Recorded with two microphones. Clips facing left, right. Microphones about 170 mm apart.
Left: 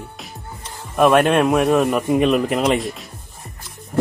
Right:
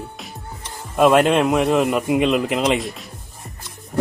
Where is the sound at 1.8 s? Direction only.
15° right (ahead or behind).